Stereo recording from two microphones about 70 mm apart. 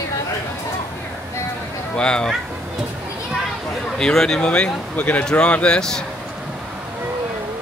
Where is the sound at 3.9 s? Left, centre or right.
Centre.